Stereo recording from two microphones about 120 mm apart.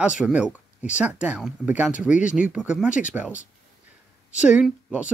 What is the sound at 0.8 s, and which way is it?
Speech, 10° right (ahead or behind).